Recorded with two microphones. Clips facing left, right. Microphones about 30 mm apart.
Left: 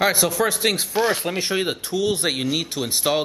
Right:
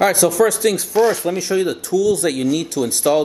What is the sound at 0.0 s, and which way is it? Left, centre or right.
A man's voice, left.